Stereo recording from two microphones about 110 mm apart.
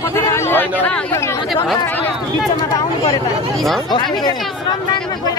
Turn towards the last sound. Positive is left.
turn(degrees=40)  # may be behind; listen again after turning